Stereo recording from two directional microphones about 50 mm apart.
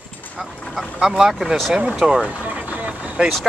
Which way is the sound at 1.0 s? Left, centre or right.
Centre.